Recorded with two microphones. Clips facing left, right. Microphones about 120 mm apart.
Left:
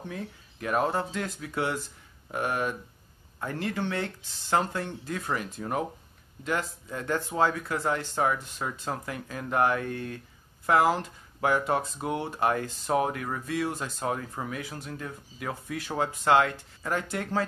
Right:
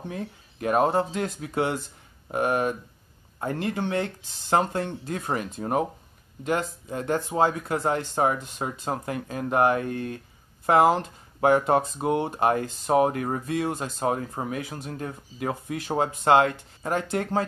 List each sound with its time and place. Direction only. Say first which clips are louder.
0.1 s speech: right 3 dB; 30° right (ahead or behind)
3.5 s speech: right 3 dB; 20° right (ahead or behind)
14.9 s speech: right 4 dB; 40° right (ahead or behind)
15.3 s speech: right 5 dB; 30° right (ahead or behind)